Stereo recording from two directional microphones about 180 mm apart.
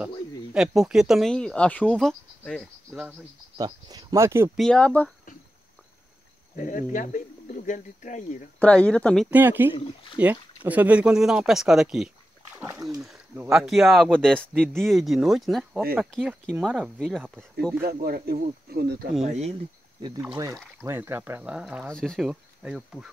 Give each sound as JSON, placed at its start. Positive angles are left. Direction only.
{"t": 0.5, "sound": "speech", "side_deg": -5}
{"t": 3.5, "sound": "speech", "side_deg": -20}
{"t": 4.6, "sound": "speech", "side_deg": 5}
{"t": 6.5, "sound": "speech", "side_deg": 45}
{"t": 8.5, "sound": "speech", "side_deg": 5}
{"t": 9.3, "sound": "speech", "side_deg": -10}
{"t": 12.5, "sound": "speech", "side_deg": -15}
{"t": 13.5, "sound": "speech", "side_deg": 0}
{"t": 17.8, "sound": "speech", "side_deg": -60}
{"t": 19.2, "sound": "speech", "side_deg": -40}
{"t": 20.0, "sound": "speech", "side_deg": -25}